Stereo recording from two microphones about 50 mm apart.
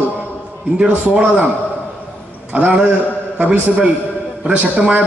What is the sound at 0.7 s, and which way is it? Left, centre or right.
Speech, centre.